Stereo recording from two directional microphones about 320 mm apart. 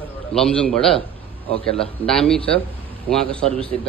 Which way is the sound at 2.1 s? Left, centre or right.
Centre.